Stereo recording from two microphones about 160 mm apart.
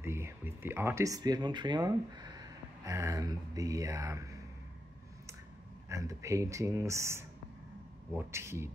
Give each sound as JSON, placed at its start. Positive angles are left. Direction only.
{"t": 0.0, "sound": "speech", "side_deg": -15}
{"t": 5.9, "sound": "speech", "side_deg": -20}